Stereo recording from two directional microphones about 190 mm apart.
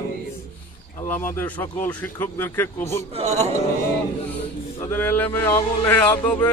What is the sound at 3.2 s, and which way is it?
Speech, 35° right (ahead or behind).